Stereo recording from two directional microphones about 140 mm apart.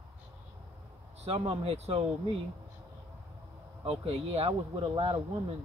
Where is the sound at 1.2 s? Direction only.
50° right (ahead or behind).